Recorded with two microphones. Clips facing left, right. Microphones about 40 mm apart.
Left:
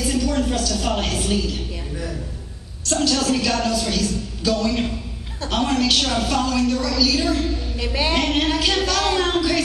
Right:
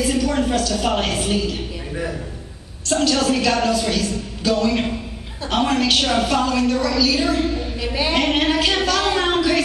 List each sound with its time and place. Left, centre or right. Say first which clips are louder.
0.0 s a woman's voice: right 2 dB; centre
7.9 s a woman's voice: right 1 dB; centre